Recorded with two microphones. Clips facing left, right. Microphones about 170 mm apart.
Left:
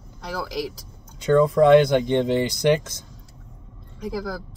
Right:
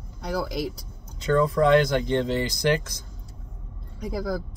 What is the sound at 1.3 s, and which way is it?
Speech, 20° left (ahead or behind).